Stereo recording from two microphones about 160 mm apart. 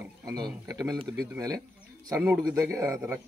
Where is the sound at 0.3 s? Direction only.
20° right (ahead or behind).